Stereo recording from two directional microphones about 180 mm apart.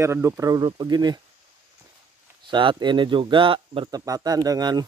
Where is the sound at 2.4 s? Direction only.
25° right (ahead or behind).